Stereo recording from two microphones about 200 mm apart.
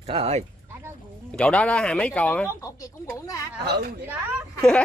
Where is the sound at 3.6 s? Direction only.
55° right (ahead or behind).